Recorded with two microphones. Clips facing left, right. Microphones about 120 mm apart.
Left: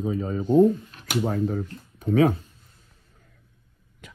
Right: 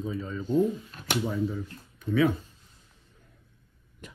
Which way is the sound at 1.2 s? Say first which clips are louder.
Left 6 dB; 60° left (ahead or behind).